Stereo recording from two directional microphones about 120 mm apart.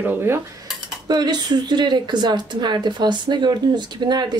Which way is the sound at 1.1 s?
35° right (ahead or behind).